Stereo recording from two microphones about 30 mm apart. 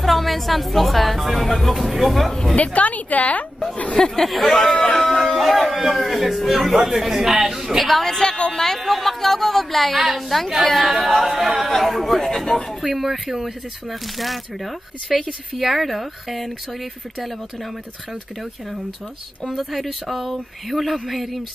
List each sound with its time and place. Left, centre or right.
0.0 s speech: centre
2.5 s a woman's voice: left
3.7 s speech: left
4.3 s speech: centre
4.9 s a sound: centre
5.2 s a man's voice: centre
7.8 s speech: centre
11.0 s a man's voice: centre
19.5 s speech: centre